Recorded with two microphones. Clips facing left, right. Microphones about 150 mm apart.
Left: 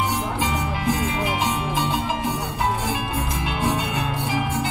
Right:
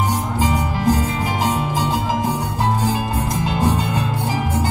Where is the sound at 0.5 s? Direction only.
40° right (ahead or behind).